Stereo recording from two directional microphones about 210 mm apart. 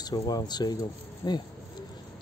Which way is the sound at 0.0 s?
20° left (ahead or behind).